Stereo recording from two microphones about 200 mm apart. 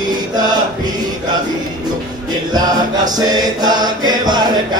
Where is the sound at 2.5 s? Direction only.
20° right (ahead or behind).